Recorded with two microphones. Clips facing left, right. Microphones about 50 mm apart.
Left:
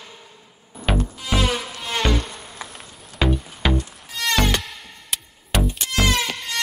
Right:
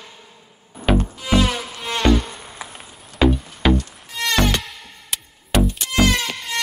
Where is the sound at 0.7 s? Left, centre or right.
Right.